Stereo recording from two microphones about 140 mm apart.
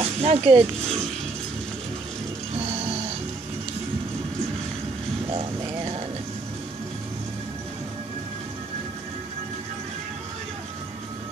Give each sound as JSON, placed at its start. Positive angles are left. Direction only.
{"t": 0.0, "sound": "speech", "side_deg": -45}
{"t": 2.5, "sound": "music", "side_deg": -45}
{"t": 5.3, "sound": "a sound", "side_deg": -40}